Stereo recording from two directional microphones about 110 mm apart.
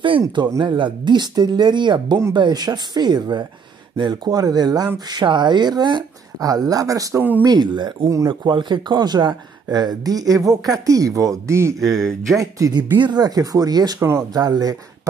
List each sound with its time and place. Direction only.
0.5 s speech: 40° right (ahead or behind)
7.4 s speech: 40° right (ahead or behind)
11.8 s speech: centre (ahead or behind)
12.4 s speech: 30° right (ahead or behind)
12.9 s speech: 40° right (ahead or behind)
13.9 s speech: 25° right (ahead or behind)
14.3 s speech: 35° right (ahead or behind)